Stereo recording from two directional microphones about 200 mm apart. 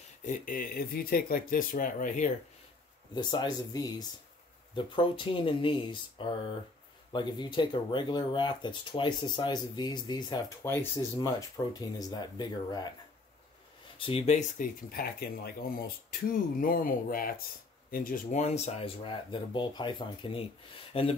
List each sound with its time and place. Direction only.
0.2 s speech: 40° left (ahead or behind)
3.2 s speech: 20° left (ahead or behind)
13.9 s speech: 25° left (ahead or behind)
14.9 s speech: 50° left (ahead or behind); by 21.2 s 30° left (ahead or behind)